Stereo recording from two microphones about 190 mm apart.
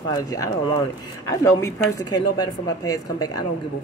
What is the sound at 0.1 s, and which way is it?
Speech, 20° left (ahead or behind).